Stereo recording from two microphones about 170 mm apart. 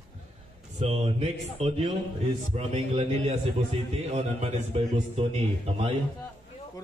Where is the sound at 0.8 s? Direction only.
40° right (ahead or behind).